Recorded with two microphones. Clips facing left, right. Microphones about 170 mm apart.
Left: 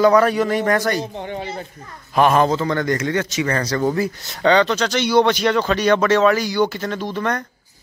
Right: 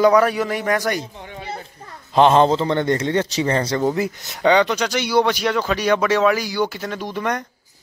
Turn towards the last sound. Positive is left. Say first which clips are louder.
# left 1 dB
turn(degrees=-15)  # may be behind; listen again after turning